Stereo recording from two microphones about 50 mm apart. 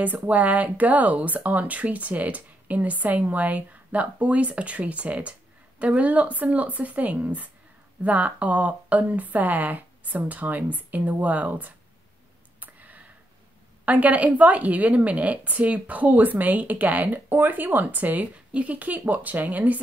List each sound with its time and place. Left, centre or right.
0.0 s speech: right
12.5 s a sound: right
13.8 s speech: right